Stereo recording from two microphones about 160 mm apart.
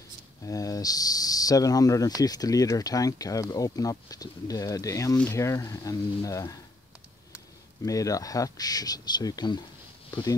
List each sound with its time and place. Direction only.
0.5 s speech: 20° left (ahead or behind)
7.8 s speech: 20° left (ahead or behind)